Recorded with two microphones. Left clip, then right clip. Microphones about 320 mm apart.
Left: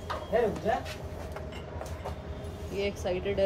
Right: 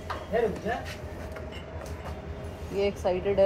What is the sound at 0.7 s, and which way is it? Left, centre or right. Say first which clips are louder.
Speech: left 2 dB; centre.